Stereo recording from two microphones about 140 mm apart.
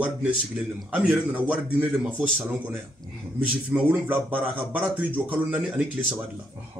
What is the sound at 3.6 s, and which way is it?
Speech, 10° right (ahead or behind).